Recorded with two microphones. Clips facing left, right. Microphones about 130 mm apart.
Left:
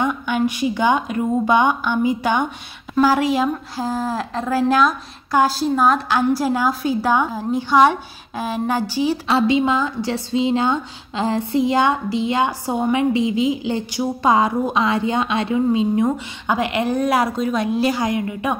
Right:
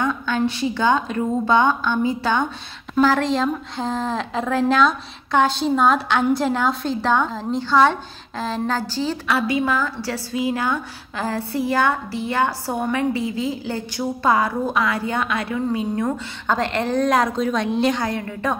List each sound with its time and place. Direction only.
0.0 s a woman's voice: 15° left (ahead or behind)